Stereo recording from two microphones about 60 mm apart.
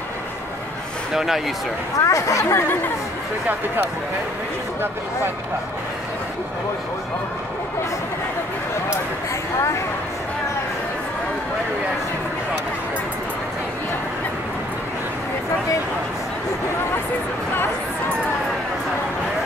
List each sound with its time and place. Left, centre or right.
1.1 s speech: centre
2.0 s speech: left